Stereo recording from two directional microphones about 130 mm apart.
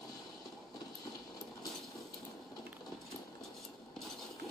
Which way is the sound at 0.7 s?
30° left (ahead or behind).